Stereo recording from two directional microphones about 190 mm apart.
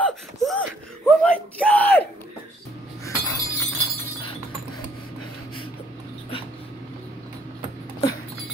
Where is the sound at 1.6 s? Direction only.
10° left (ahead or behind).